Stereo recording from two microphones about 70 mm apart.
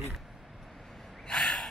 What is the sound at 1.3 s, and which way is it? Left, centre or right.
Gasp, centre.